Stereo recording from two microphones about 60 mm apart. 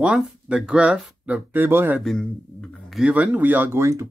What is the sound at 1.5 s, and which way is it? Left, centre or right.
Speech, right.